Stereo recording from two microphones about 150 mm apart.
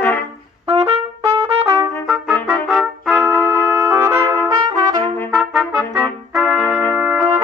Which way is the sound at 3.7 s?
15° right (ahead or behind).